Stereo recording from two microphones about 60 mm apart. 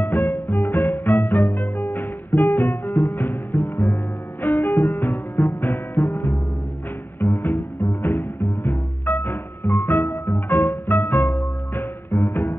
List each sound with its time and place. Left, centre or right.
0.0 s music: left